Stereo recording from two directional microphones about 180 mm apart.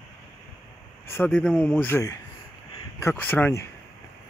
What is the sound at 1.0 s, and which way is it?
Speech, 10° left (ahead or behind).